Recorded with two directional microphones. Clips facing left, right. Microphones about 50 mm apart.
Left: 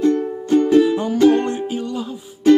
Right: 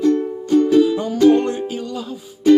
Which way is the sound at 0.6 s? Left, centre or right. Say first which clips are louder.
Even; left.